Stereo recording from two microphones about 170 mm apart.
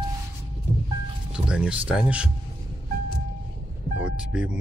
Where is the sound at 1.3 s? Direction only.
5° right (ahead or behind).